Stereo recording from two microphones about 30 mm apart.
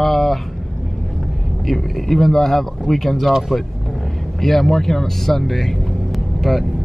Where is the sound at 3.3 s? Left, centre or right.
Centre.